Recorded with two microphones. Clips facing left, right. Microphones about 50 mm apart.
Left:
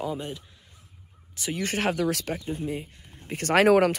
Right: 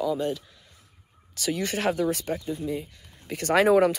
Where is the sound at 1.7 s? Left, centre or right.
Left.